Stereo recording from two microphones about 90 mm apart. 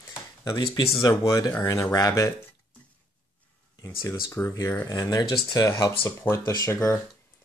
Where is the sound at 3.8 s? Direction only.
30° left (ahead or behind).